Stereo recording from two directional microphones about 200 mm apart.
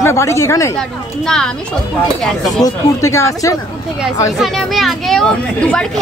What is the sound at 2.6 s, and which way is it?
Speech, 15° left (ahead or behind).